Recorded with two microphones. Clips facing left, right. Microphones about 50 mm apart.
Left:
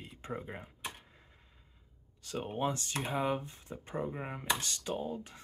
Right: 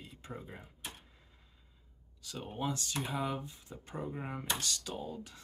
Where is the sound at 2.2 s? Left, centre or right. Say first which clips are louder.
Left 4 dB; left.